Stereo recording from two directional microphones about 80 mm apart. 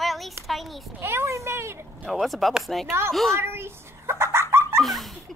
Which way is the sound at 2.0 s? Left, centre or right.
Centre.